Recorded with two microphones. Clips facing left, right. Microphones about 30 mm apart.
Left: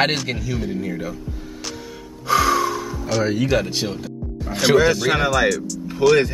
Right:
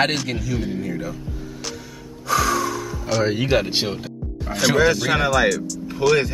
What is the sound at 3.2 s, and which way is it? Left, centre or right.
Speech, centre.